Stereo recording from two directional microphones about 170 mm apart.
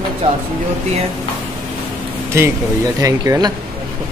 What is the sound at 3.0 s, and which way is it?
Speech, 20° right (ahead or behind).